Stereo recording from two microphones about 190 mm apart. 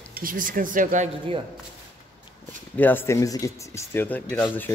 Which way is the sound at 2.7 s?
10° left (ahead or behind).